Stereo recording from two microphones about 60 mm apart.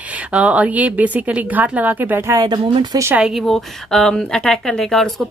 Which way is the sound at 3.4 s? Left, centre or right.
Centre.